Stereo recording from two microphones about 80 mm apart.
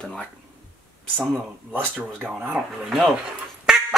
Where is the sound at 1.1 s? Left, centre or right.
Centre.